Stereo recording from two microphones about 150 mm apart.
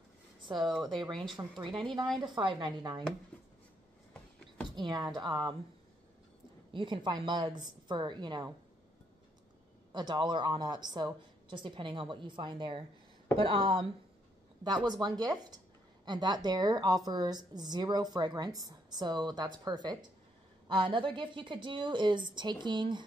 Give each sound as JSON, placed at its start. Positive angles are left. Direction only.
{"t": 0.5, "sound": "a woman's voice", "side_deg": -30}
{"t": 4.7, "sound": "speech", "side_deg": -30}
{"t": 6.7, "sound": "a woman's voice", "side_deg": -30}
{"t": 9.9, "sound": "a woman's voice", "side_deg": -30}
{"t": 14.9, "sound": "a woman's voice", "side_deg": -30}